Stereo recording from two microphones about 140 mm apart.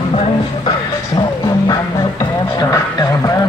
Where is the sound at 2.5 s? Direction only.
20° left (ahead or behind).